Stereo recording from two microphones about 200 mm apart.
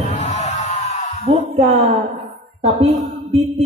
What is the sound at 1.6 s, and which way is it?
Speech, 30° right (ahead or behind).